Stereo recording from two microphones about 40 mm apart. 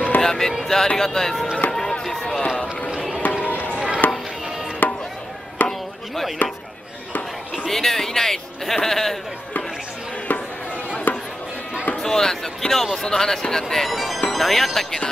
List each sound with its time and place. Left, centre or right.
0.2 s music: centre
0.9 s a man's voice: centre
1.7 s music: centre
2.4 s run: left
3.2 s run: left
4.0 s chopping: left
4.8 s chop: left
6.4 s speech: left
7.7 s a man's voice: centre
11.1 s music: left
12.0 s a man's voice: centre